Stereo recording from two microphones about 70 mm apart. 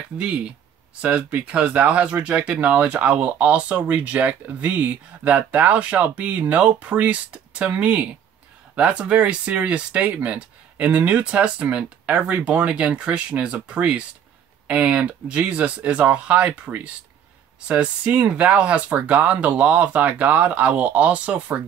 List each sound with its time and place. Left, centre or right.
0.2 s speech: centre